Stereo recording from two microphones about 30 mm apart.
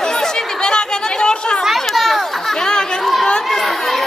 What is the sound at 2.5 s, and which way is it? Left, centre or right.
Chatter, left.